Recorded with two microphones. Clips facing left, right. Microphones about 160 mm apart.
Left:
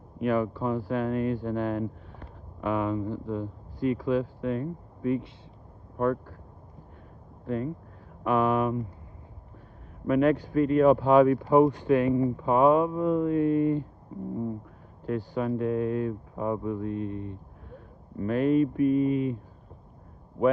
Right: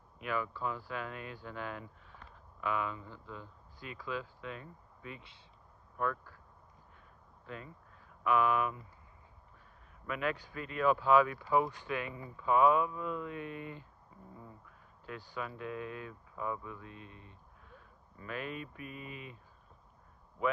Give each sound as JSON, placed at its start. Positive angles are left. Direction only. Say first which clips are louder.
{"t": 0.2, "sound": "speech", "louder": "left 11 dB", "side_deg": 45}
{"t": 7.4, "sound": "speech", "louder": "left 17 dB", "side_deg": 45}
{"t": 10.0, "sound": "speech", "louder": "left 14 dB", "side_deg": 40}